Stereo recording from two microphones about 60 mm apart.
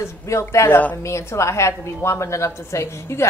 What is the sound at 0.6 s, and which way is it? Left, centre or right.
Speech, left.